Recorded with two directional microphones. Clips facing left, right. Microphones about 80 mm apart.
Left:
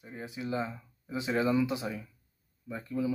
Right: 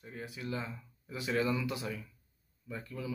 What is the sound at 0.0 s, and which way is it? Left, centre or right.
A man's voice, left.